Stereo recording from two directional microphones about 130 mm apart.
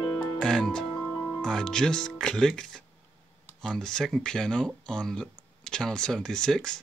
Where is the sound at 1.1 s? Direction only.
20° left (ahead or behind).